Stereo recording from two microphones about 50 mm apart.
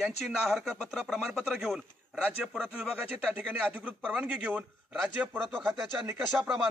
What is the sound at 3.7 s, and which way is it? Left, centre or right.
Speech, right.